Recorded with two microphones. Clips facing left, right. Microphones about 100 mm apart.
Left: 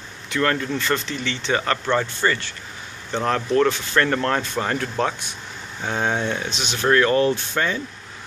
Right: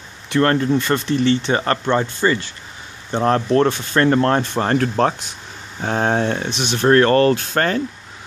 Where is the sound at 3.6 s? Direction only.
30° right (ahead or behind).